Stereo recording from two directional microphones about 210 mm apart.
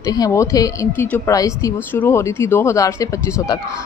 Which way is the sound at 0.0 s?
15° left (ahead or behind).